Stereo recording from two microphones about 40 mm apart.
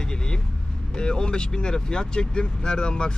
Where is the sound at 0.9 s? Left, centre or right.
Left.